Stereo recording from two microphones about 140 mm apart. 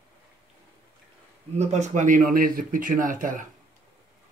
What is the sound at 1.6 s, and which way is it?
Speech, 55° right (ahead or behind).